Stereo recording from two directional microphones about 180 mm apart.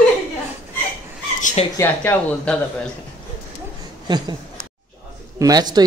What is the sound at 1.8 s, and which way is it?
Speech, 10° left (ahead or behind).